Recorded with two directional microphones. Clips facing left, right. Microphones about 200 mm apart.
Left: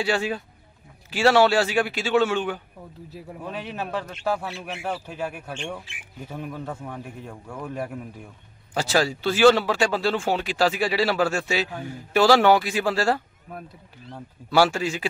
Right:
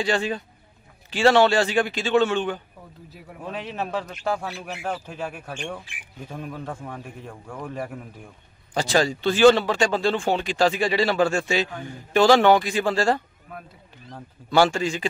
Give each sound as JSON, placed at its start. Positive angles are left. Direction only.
{"t": 0.0, "sound": "a man's voice", "side_deg": 10}